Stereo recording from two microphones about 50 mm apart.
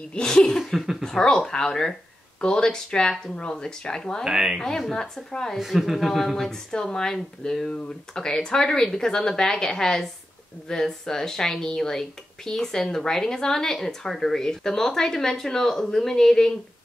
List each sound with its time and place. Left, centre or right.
0.1 s a woman's voice: centre
0.6 s speech: centre
1.0 s a woman's voice: centre
4.2 s speech: centre
4.6 s a woman's voice: centre
5.6 s a woman's voice: centre